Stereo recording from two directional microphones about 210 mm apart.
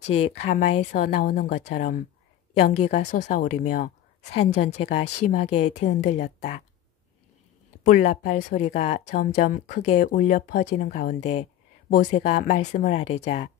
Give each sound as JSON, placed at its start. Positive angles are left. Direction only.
{"t": 0.4, "sound": "speech", "side_deg": 35}
{"t": 7.8, "sound": "speech", "side_deg": 35}